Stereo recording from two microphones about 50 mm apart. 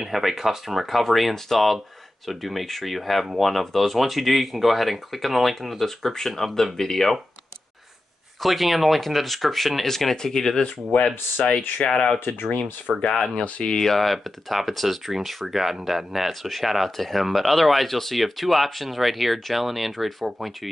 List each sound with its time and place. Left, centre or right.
0.0 s speech: centre
8.4 s speech: centre
12.9 s speech: centre
13.4 s speech: centre